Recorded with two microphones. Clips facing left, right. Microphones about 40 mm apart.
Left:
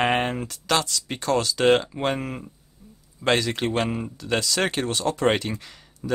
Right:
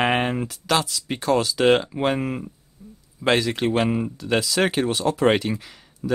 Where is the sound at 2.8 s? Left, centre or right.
Right.